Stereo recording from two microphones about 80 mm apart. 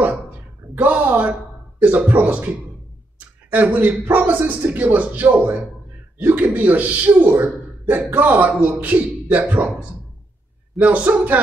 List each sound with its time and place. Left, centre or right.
0.7 s a man's voice: right
3.5 s a man's voice: centre